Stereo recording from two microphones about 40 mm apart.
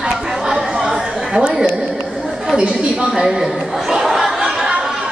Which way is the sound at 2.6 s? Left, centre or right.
Centre.